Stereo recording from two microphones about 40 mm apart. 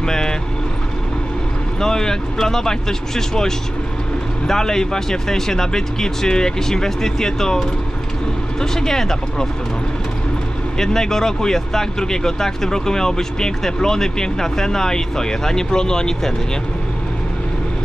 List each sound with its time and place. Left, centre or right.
0.0 s vehicle: centre
1.8 s speech: centre
10.8 s speech: centre